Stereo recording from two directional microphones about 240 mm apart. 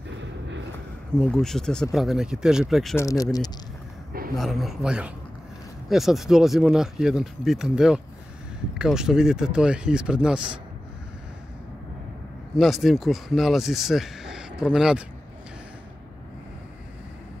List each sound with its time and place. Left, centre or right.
1.1 s speech: centre
3.1 s speech: centre
4.4 s speech: centre
12.5 s speech: centre